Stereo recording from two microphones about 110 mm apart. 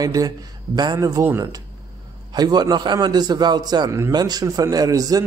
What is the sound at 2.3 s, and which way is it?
Speech, 40° right (ahead or behind).